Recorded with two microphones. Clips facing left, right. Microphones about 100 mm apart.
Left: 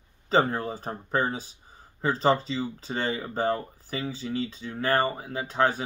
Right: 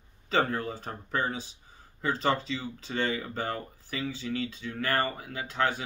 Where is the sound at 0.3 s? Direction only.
30° left (ahead or behind).